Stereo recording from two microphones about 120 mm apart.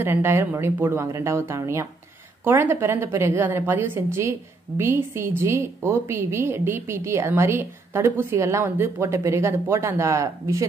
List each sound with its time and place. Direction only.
0.0 s a woman's voice: 20° right (ahead or behind)